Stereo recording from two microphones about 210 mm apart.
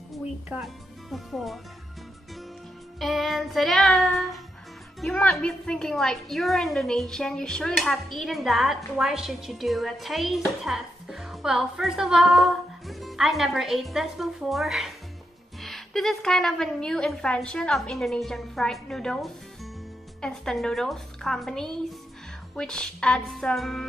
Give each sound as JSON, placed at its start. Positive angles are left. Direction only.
{"t": 0.1, "sound": "music", "side_deg": 0}
{"t": 1.1, "sound": "a woman's voice", "side_deg": 0}
{"t": 3.0, "sound": "a woman's voice", "side_deg": 0}